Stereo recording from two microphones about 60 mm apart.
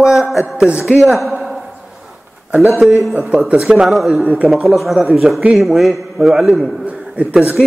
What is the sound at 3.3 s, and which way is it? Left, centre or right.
Speech, right.